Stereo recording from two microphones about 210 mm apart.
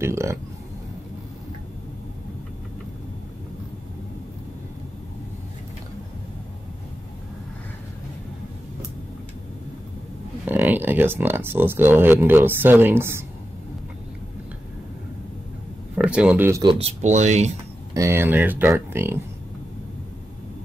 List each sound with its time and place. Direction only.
0.0 s speech: 15° right (ahead or behind)
10.4 s speech: 10° right (ahead or behind)
16.0 s speech: 5° right (ahead or behind)
16.6 s speech: 25° right (ahead or behind)
17.9 s speech: 15° right (ahead or behind)